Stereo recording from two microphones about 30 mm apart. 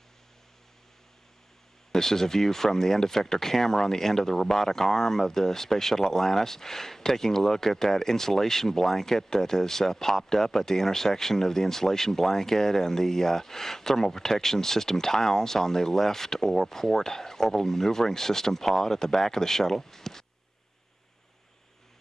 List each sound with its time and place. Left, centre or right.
1.9 s speech: centre